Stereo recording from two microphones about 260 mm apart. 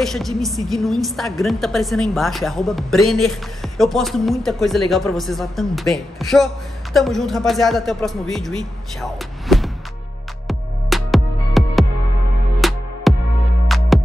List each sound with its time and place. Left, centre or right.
0.0 s a woman's voice: centre
9.0 s a sound: centre
10.5 s music: centre